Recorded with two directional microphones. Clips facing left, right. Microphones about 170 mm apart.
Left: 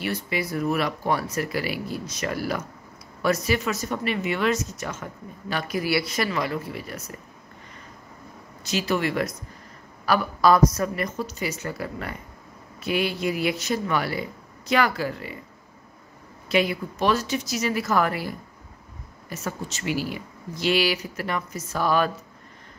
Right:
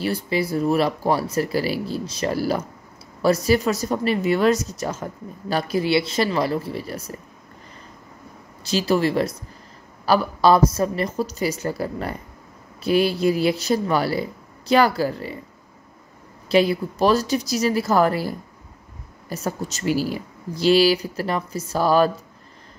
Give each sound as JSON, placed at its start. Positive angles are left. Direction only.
{"t": 0.0, "sound": "speech", "side_deg": -30}
{"t": 8.6, "sound": "speech", "side_deg": -35}
{"t": 16.4, "sound": "speech", "side_deg": -35}